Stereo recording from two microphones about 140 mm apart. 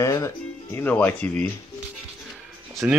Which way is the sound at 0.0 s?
25° left (ahead or behind).